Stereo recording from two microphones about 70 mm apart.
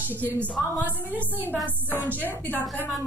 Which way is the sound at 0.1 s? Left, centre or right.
Left.